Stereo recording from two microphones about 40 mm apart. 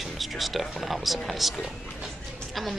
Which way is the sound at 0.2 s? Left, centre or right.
Centre.